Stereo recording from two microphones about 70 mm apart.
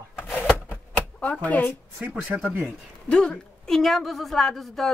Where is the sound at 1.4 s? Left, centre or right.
Left.